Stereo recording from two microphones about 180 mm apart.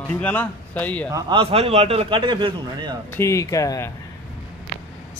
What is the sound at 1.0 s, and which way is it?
A man's voice, 20° right (ahead or behind).